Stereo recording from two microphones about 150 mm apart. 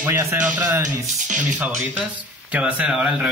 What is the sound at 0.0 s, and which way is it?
A man's voice, 20° right (ahead or behind).